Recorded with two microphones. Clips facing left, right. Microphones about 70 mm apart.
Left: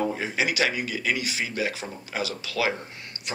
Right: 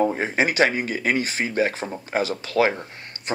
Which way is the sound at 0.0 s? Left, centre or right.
Right.